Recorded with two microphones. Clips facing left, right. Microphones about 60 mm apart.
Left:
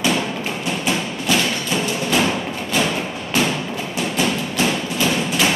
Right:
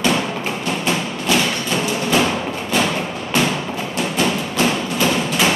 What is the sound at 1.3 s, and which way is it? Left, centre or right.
Music, centre.